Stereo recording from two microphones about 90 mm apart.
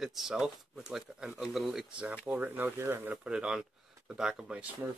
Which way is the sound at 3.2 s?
10° right (ahead or behind).